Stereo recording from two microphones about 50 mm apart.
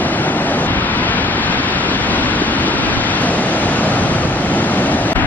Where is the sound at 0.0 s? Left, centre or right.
Left.